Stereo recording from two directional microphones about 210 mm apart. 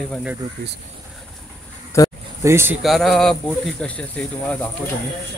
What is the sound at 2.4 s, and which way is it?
Speech, 10° right (ahead or behind).